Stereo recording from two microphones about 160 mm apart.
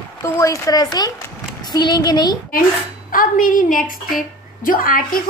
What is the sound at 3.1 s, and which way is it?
A woman's voice, 60° left (ahead or behind).